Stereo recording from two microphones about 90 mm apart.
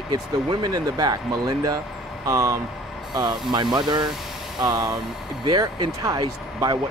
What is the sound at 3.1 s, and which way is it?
Speech, 55° right (ahead or behind).